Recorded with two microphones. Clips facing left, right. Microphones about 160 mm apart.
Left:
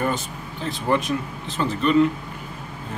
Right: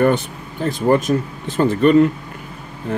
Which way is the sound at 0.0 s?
60° right (ahead or behind).